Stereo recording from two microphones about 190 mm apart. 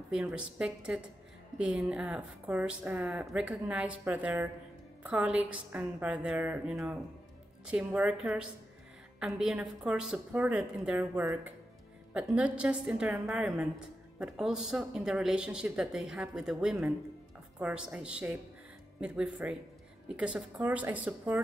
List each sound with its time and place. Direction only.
0.1 s a woman's voice: 5° right (ahead or behind)